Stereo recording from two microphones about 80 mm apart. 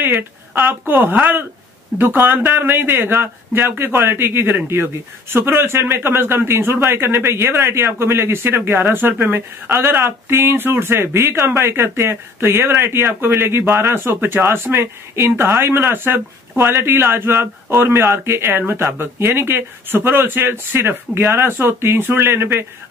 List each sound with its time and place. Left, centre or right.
0.0 s speech: right